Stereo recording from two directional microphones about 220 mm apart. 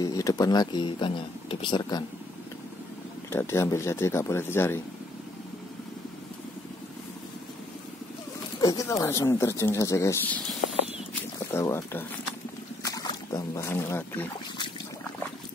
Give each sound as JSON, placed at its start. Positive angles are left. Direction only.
{"t": 0.0, "sound": "speech", "side_deg": 15}
{"t": 3.3, "sound": "speech", "side_deg": 10}
{"t": 8.5, "sound": "speech", "side_deg": 15}
{"t": 11.5, "sound": "speech", "side_deg": 10}
{"t": 12.8, "sound": "boat", "side_deg": 15}